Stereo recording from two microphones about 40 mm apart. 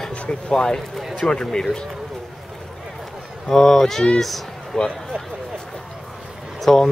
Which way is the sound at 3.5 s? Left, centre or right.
Centre.